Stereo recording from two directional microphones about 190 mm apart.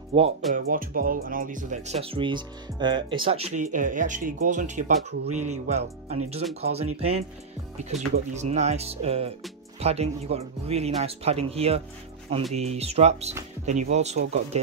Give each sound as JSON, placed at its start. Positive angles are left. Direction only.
{"t": 0.1, "sound": "speech", "side_deg": -25}
{"t": 0.6, "sound": "speech", "side_deg": -45}